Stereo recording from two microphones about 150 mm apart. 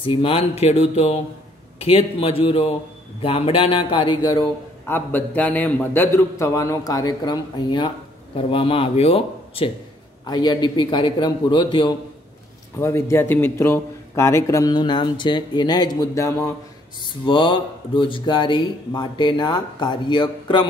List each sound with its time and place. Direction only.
0.0 s speech: 35° left (ahead or behind)
4.8 s a man's voice: 15° left (ahead or behind); by 9.7 s 40° left (ahead or behind)
10.2 s a man's voice: 30° left (ahead or behind)
12.7 s a man's voice: 15° left (ahead or behind)
17.0 s a man's voice: 35° left (ahead or behind)